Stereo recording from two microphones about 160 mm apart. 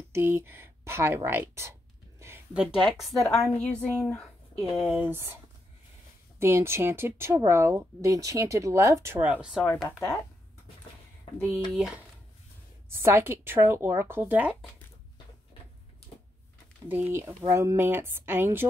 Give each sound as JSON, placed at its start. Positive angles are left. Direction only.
{"t": 0.1, "sound": "a sound", "side_deg": -15}
{"t": 2.8, "sound": "speech", "side_deg": 5}
{"t": 4.9, "sound": "speech", "side_deg": -10}
{"t": 6.4, "sound": "speech", "side_deg": -15}
{"t": 9.4, "sound": "speech", "side_deg": -5}
{"t": 11.7, "sound": "speech", "side_deg": -5}
{"t": 16.9, "sound": "speech", "side_deg": -15}